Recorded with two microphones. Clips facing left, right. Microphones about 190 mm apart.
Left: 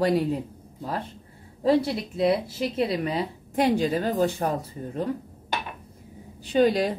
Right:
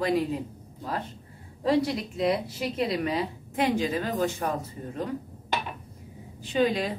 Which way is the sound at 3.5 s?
35° left (ahead or behind).